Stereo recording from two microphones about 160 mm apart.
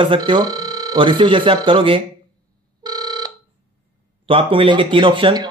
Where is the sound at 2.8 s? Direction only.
25° right (ahead or behind).